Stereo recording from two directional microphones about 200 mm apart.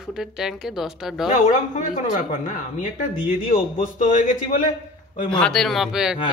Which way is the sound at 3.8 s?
40° left (ahead or behind).